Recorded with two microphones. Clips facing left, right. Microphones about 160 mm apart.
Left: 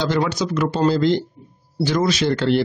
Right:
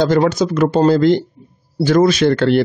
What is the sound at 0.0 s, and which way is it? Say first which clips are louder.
Speech: right 7 dB; 50° right (ahead or behind).